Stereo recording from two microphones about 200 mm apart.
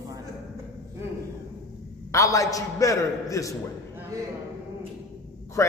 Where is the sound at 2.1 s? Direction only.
15° left (ahead or behind).